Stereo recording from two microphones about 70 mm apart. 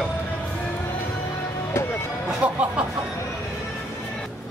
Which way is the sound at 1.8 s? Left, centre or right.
Left.